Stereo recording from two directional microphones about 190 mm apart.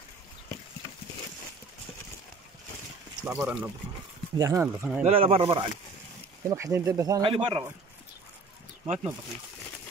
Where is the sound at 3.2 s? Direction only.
5° right (ahead or behind).